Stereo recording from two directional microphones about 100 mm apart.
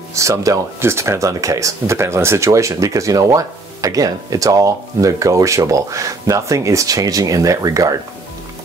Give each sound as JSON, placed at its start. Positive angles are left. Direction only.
{"t": 0.1, "sound": "speech", "side_deg": -30}